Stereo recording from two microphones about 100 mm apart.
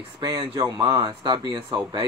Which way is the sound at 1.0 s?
50° right (ahead or behind).